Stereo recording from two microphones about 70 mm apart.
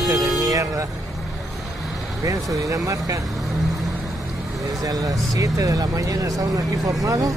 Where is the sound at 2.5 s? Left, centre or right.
Right.